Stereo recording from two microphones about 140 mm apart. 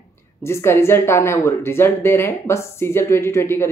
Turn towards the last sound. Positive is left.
turn(degrees=20)  # may be behind; listen again after turning